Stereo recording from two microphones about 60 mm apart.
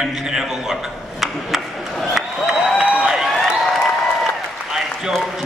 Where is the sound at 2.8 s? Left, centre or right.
Centre.